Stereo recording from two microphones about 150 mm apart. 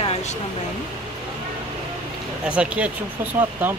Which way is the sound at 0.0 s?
50° left (ahead or behind).